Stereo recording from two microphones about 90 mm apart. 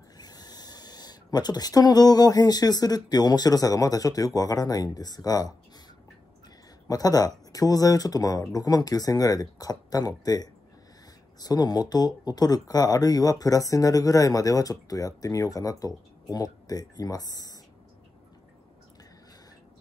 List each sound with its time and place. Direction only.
0.2 s speech: 50° left (ahead or behind)
6.9 s speech: 45° left (ahead or behind)